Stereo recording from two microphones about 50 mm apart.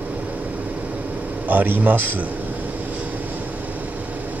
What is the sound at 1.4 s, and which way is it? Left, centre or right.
Speech, right.